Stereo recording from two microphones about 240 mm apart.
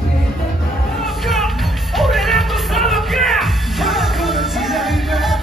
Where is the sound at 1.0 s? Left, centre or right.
Centre.